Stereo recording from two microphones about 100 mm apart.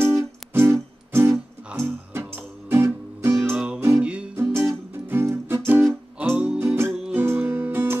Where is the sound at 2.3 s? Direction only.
25° right (ahead or behind).